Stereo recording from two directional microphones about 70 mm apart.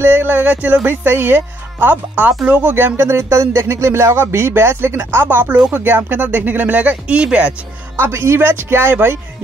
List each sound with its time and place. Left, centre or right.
0.0 s speech: right
2.6 s speech: right; by 7.5 s centre
7.9 s speech: right